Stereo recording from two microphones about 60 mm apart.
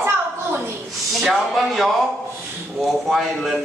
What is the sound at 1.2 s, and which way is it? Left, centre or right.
A man's voice, centre.